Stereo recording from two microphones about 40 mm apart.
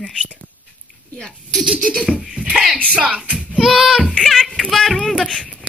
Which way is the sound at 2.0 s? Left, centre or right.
Centre.